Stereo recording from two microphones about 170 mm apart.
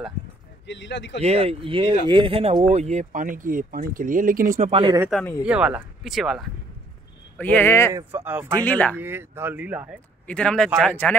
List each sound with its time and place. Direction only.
0.7 s speech: 90° left
1.2 s speech: 35° right (ahead or behind); by 4.6 s 55° right (ahead or behind)
4.6 s speech: 30° right (ahead or behind)
5.4 s speech: 5° right (ahead or behind)
7.3 s speech: 10° left (ahead or behind)
7.9 s speech: 15° right (ahead or behind)
8.6 s speech: 10° left (ahead or behind)
8.9 s speech: 15° right (ahead or behind)
10.2 s speech: 5° left (ahead or behind)